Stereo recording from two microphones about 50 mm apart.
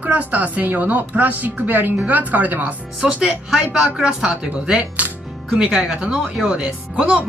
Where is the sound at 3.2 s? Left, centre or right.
Centre.